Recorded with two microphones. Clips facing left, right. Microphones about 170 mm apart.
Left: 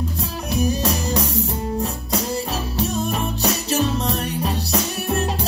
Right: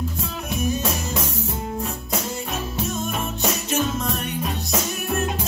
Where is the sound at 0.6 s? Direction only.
35° left (ahead or behind).